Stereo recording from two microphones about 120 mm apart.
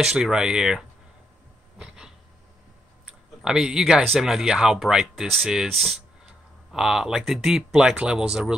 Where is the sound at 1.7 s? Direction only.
5° right (ahead or behind).